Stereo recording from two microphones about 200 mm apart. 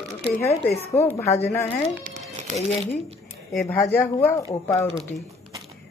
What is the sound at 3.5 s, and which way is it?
A woman's voice, centre (ahead or behind).